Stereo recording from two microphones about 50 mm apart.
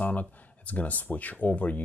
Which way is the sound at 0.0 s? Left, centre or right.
Left.